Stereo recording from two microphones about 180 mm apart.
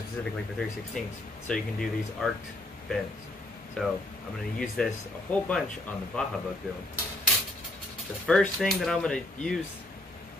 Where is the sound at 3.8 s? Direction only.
5° left (ahead or behind).